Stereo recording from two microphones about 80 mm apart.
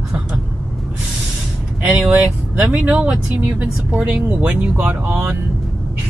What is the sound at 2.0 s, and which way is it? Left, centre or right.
Speech, centre.